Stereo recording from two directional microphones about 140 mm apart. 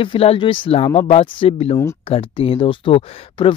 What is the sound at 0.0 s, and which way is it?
Speech, 40° left (ahead or behind).